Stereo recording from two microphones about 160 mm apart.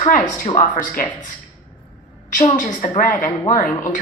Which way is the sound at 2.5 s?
50° left (ahead or behind).